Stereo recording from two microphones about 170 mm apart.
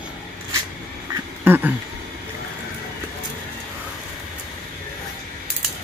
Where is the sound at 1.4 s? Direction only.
10° right (ahead or behind).